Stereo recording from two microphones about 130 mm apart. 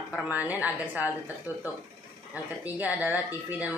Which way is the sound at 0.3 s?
10° right (ahead or behind).